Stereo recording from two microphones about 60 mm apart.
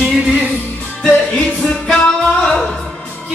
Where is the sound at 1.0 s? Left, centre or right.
Left.